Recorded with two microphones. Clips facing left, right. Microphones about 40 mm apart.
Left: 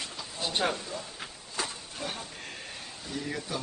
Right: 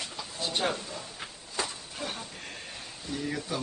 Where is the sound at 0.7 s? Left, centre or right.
Centre.